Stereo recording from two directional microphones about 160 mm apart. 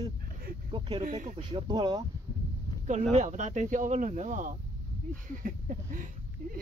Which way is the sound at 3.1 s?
45° right (ahead or behind).